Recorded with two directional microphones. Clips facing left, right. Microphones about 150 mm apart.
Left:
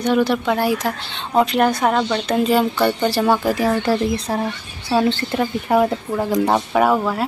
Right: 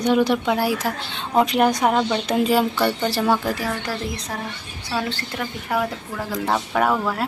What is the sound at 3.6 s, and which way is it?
Speech, 30° left (ahead or behind).